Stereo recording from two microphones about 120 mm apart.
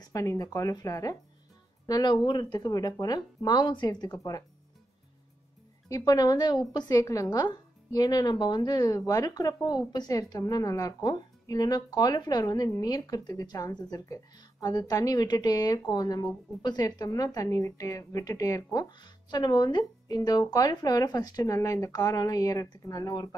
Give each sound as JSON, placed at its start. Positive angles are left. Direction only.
{"t": 0.1, "sound": "a woman's voice", "side_deg": 25}
{"t": 5.9, "sound": "a woman's voice", "side_deg": 30}